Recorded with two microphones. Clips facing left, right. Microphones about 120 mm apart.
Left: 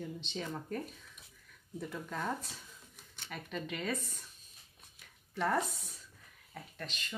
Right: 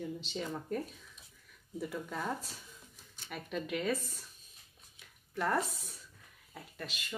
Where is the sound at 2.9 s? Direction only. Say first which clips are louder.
Left 2 dB; 60° left (ahead or behind).